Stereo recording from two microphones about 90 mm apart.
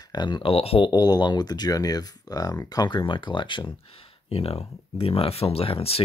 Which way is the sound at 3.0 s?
65° left (ahead or behind).